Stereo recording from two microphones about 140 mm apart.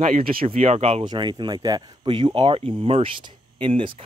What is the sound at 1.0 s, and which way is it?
Speech, 30° right (ahead or behind).